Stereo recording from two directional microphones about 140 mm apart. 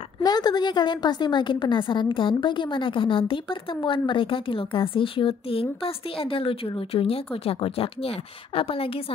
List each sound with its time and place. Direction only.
0.2 s a woman's voice: 30° left (ahead or behind)